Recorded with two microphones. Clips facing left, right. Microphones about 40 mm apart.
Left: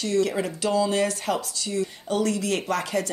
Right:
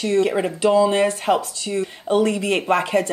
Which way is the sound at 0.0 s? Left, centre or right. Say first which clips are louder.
Right 5 dB; right.